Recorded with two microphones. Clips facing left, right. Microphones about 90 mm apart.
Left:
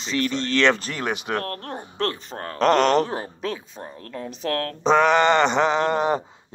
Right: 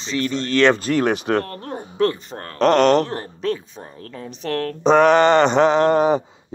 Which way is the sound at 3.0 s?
10° left (ahead or behind).